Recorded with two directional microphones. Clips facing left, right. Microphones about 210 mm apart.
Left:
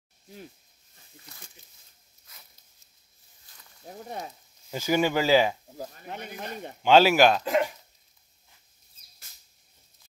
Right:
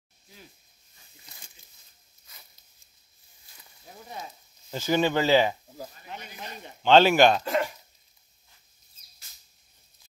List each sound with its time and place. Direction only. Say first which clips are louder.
3.9 s frying: left 6 dB; 50° left (ahead or behind)
4.6 s speech: even; 10° left (ahead or behind)
6.0 s speech: left 4 dB; 55° left (ahead or behind)
6.8 s speech: even; 5° left (ahead or behind)
7.4 s speech: left 2 dB; 15° left (ahead or behind)